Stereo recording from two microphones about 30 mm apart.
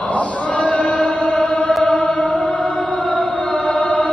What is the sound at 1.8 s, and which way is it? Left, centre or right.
Music, left.